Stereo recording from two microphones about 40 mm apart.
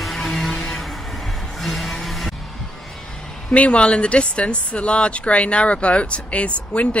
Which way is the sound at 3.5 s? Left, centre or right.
Left.